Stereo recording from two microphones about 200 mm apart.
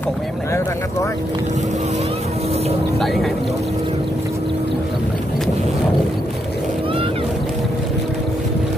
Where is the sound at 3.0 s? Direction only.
Centre (ahead or behind).